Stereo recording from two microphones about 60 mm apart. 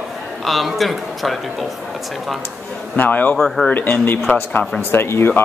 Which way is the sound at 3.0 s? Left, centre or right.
Left.